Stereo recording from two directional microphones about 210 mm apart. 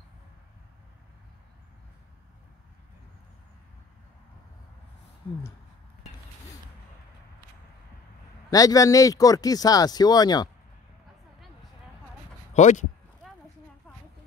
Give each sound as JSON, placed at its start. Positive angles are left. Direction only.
{"t": 8.5, "sound": "speech", "side_deg": 15}
{"t": 12.5, "sound": "speech", "side_deg": 35}